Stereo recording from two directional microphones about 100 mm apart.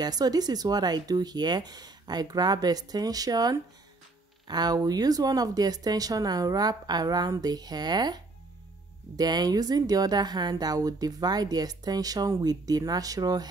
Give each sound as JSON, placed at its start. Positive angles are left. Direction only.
{"t": 0.0, "sound": "speech", "side_deg": -40}